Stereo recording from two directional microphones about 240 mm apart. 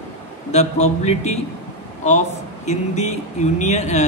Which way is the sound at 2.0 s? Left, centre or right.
Left.